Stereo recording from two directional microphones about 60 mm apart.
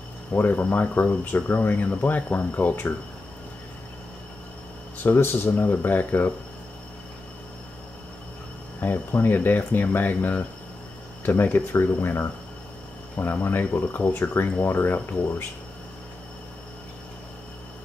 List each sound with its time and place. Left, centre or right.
0.3 s speech: left
5.0 s speech: left
8.8 s speech: left